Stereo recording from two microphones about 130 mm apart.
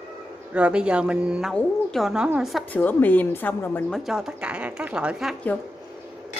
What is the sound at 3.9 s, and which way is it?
Speech, 5° right (ahead or behind).